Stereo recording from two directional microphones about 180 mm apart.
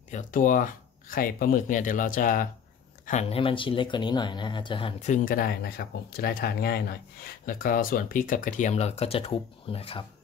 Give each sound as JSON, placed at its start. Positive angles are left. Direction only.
{"t": 0.1, "sound": "speech", "side_deg": 45}
{"t": 3.1, "sound": "speech", "side_deg": 35}
{"t": 5.0, "sound": "speech", "side_deg": 45}
{"t": 7.4, "sound": "speech", "side_deg": 50}